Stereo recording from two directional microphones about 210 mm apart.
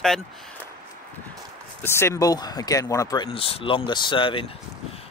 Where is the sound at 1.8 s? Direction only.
10° left (ahead or behind).